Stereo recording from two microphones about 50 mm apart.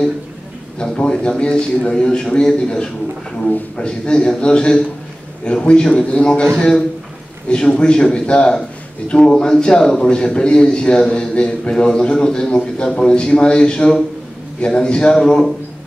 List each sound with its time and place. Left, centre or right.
0.7 s a man's voice: left
7.4 s a man's voice: left